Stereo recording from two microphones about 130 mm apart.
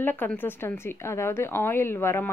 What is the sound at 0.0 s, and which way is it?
A woman's voice, 15° left (ahead or behind).